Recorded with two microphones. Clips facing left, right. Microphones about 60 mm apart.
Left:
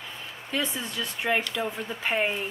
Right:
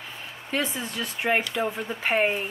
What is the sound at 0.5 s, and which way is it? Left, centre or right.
Speech, right.